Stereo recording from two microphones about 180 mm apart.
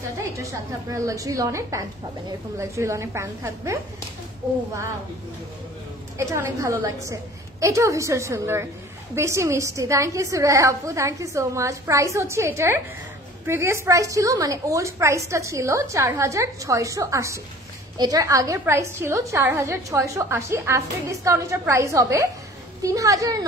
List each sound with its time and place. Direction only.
0.2 s a woman's voice: 15° right (ahead or behind)
6.1 s a woman's voice: 15° right (ahead or behind)